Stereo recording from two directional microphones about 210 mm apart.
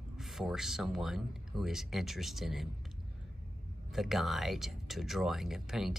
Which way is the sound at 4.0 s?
Centre (ahead or behind).